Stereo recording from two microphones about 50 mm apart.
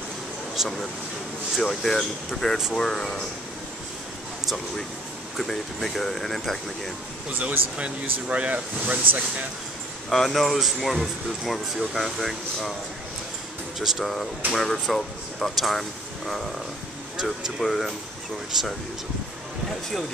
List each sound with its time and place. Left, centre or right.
0.6 s speech: centre
1.6 s speech: centre
5.4 s speech: centre
7.3 s speech: right
10.0 s speech: centre
13.7 s speech: centre
17.6 s speech: centre